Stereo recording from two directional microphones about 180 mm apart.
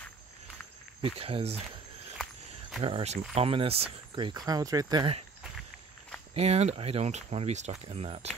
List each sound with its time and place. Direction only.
1.0 s speech: 30° right (ahead or behind)
2.8 s speech: 35° right (ahead or behind)
6.3 s speech: 35° right (ahead or behind)